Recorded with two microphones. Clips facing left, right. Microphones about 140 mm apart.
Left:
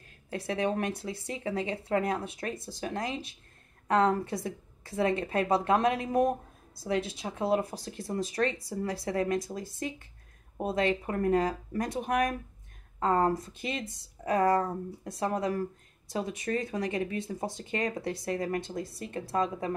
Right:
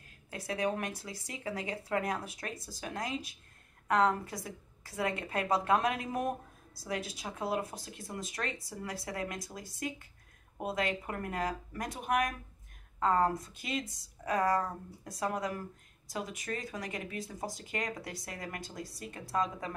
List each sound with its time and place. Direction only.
0.3 s speech: 30° left (ahead or behind)